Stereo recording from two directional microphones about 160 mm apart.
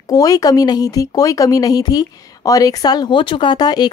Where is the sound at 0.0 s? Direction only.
20° left (ahead or behind).